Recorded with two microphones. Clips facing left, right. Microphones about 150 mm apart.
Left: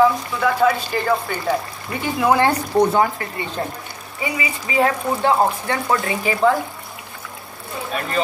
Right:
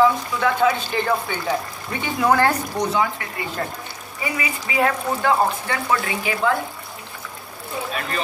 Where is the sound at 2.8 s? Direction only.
50° left (ahead or behind).